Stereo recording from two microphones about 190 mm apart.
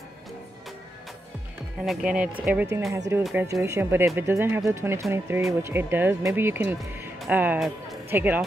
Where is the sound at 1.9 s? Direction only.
5° right (ahead or behind).